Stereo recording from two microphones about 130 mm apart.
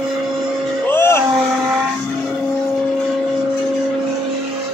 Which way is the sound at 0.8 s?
20° left (ahead or behind).